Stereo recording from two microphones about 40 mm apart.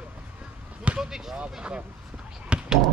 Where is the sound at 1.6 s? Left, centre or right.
Right.